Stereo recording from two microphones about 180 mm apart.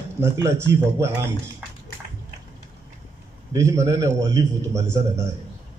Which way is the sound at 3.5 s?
15° right (ahead or behind).